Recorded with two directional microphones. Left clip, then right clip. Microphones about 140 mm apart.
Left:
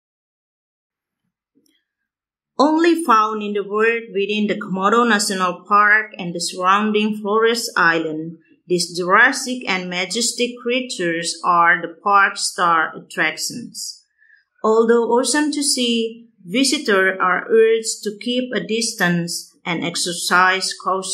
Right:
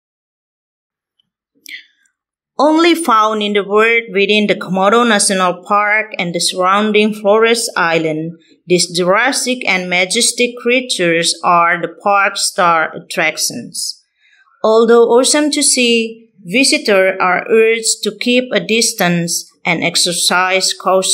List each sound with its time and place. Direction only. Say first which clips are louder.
2.5 s speech: right 5 dB; 60° right (ahead or behind)